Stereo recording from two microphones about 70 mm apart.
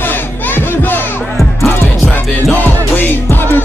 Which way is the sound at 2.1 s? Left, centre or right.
Left.